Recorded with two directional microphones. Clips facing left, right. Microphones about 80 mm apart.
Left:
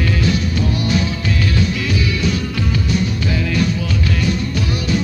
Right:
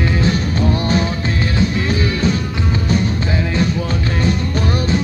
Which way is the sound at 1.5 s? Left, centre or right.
Right.